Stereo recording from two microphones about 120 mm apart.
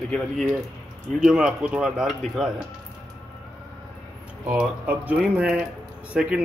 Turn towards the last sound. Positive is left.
turn(degrees=-10)  # may be behind; listen again after turning